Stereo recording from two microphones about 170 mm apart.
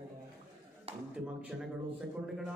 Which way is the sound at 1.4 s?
5° right (ahead or behind).